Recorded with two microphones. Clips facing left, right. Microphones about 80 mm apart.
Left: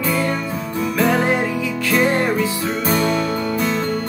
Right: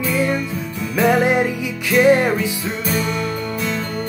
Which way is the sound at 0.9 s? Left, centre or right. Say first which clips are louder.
Right 3 dB; centre.